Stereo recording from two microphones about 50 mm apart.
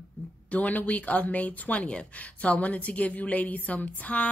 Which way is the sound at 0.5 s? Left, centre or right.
Left.